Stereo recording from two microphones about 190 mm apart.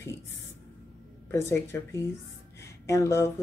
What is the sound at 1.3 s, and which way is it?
Speech, 15° left (ahead or behind).